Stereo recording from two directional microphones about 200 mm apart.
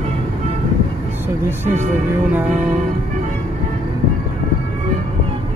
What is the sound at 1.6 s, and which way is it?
Speech, 35° right (ahead or behind).